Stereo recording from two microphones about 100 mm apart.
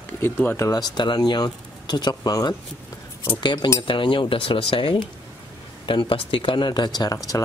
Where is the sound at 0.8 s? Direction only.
45° left (ahead or behind).